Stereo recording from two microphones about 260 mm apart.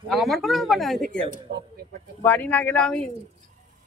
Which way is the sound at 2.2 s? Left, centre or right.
Centre.